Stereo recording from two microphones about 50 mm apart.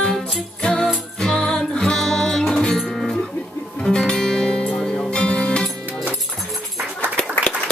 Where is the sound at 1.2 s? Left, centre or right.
Centre.